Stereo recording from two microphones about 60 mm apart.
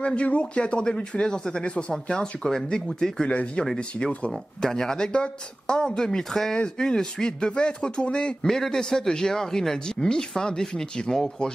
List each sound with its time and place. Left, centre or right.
0.0 s speech: left